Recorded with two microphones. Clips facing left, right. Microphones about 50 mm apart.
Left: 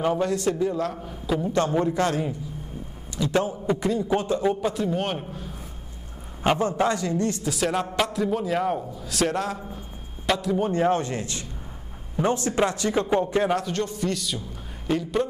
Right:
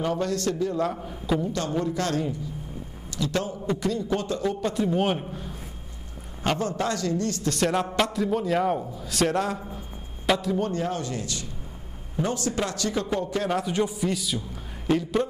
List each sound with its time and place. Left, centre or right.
0.0 s a man's voice: centre
0.7 s a man's voice: centre
1.5 s a man's voice: left
4.6 s a man's voice: centre
6.4 s a man's voice: centre
7.4 s a man's voice: centre
10.7 s a man's voice: left
13.6 s a man's voice: centre